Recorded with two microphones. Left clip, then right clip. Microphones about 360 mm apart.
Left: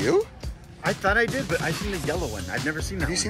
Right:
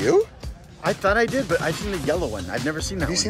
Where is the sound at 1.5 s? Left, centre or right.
Right.